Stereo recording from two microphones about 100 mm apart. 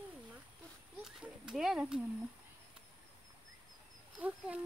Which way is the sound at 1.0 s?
5° right (ahead or behind).